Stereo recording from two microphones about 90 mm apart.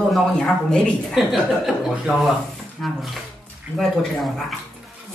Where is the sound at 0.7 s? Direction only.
10° left (ahead or behind).